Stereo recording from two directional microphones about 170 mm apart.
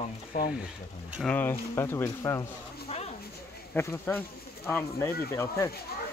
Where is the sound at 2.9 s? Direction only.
40° left (ahead or behind).